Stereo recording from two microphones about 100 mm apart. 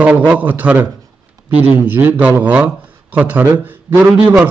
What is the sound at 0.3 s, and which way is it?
A man's voice, 15° right (ahead or behind).